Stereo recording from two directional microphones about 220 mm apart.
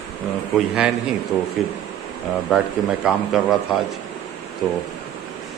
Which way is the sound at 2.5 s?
Centre (ahead or behind).